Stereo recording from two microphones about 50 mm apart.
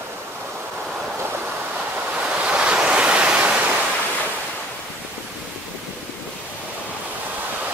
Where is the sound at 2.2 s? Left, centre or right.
Right.